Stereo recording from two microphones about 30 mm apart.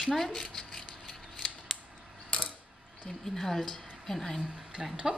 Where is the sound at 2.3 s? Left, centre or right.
Left.